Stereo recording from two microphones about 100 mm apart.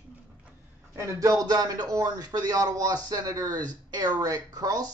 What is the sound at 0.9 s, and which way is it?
Speech, 35° right (ahead or behind).